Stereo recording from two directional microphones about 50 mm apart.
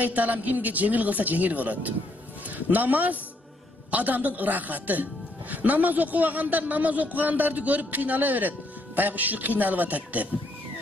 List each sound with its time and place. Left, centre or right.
0.0 s a man's voice: right